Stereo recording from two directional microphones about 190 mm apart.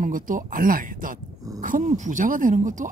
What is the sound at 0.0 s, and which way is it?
Speech, 45° right (ahead or behind).